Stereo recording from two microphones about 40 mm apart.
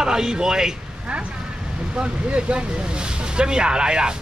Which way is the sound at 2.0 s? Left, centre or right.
Right.